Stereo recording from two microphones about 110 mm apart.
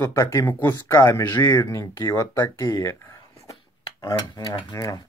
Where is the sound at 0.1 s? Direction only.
30° left (ahead or behind).